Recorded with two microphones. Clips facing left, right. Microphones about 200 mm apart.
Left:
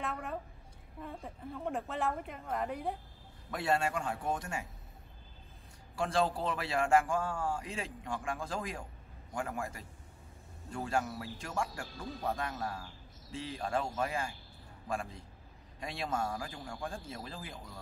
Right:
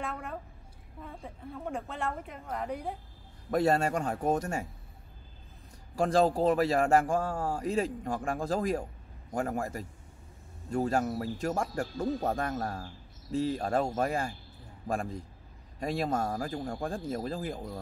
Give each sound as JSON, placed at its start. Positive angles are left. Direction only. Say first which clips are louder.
{"t": 0.0, "sound": "a sound", "louder": "right 1 dB", "side_deg": 0}
{"t": 1.0, "sound": "a woman's voice", "louder": "even", "side_deg": 0}
{"t": 3.4, "sound": "speech", "louder": "right 6 dB", "side_deg": -40}
{"t": 5.9, "sound": "speech", "louder": "right 7 dB", "side_deg": -40}